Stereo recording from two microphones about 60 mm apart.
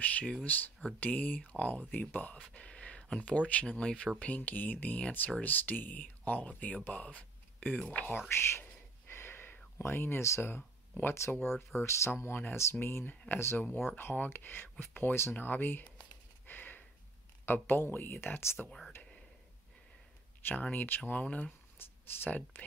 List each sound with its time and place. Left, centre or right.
0.0 s speech: left
4.4 s speech: left
8.3 s whispering: left
9.8 s speech: left
12.2 s speech: left
16.4 s a sound: left
17.5 s speech: left
20.4 s speech: left
21.7 s speech: left
22.3 s speech: left